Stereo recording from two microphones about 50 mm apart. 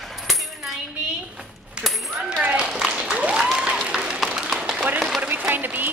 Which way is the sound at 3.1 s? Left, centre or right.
Right.